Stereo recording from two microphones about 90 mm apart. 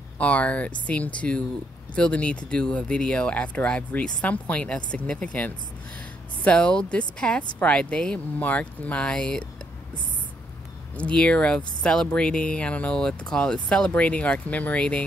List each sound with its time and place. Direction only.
0.2 s speech: 15° left (ahead or behind)
11.0 s speech: 15° left (ahead or behind)